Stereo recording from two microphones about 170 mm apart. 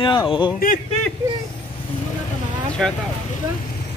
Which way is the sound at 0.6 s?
60° left (ahead or behind).